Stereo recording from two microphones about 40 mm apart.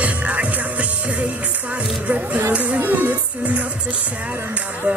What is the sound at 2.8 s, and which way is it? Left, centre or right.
Music, right.